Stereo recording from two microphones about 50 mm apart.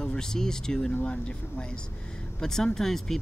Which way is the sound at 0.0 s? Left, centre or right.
Centre.